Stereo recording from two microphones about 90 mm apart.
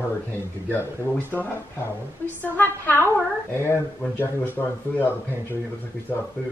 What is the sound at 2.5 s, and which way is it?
Speech, 20° left (ahead or behind).